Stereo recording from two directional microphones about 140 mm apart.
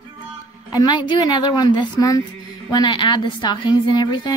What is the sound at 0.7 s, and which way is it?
A woman's voice, 30° left (ahead or behind).